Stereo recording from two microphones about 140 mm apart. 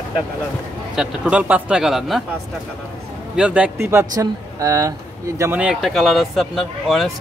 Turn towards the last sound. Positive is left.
turn(degrees=0)  # may be behind; listen again after turning